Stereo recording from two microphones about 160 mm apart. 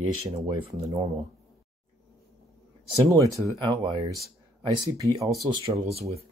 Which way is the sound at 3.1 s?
20° right (ahead or behind).